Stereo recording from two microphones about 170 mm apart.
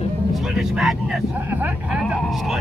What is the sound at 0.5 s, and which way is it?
Speech, centre (ahead or behind).